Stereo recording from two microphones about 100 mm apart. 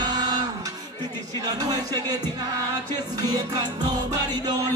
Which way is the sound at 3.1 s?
40° right (ahead or behind).